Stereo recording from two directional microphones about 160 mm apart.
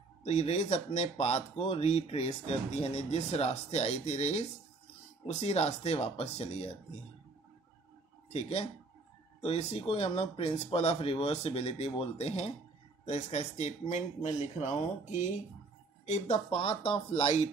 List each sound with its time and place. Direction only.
0.2 s speech: 40° left (ahead or behind)
8.3 s speech: 40° left (ahead or behind)